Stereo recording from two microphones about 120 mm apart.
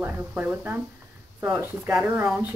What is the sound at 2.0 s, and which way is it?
Speech, 15° right (ahead or behind).